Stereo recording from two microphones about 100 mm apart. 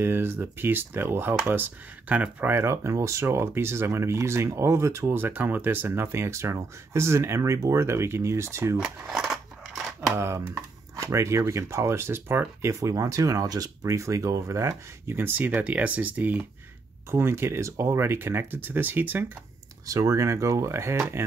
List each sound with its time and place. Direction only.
0.0 s speech: 20° right (ahead or behind)
8.7 s scissors: 5° right (ahead or behind)
10.1 s speech: 25° right (ahead or behind)
19.9 s speech: 35° right (ahead or behind)